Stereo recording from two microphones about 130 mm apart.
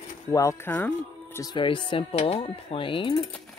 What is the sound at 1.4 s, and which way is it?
Speech, 35° left (ahead or behind).